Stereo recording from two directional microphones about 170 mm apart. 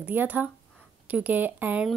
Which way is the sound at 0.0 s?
10° right (ahead or behind).